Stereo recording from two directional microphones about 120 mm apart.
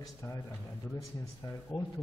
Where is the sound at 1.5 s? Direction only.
20° left (ahead or behind).